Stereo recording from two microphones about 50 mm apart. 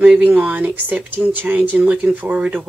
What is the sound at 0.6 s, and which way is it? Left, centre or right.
Speech, right.